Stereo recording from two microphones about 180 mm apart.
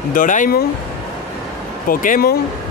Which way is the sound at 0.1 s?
45° left (ahead or behind).